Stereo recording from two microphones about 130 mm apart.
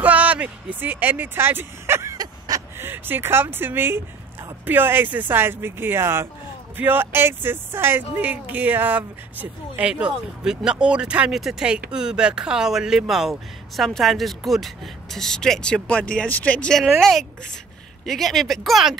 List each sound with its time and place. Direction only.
0.0 s speech: 10° right (ahead or behind); by 2.6 s 30° right (ahead or behind)
2.8 s speech: 15° right (ahead or behind); by 18.9 s centre (ahead or behind)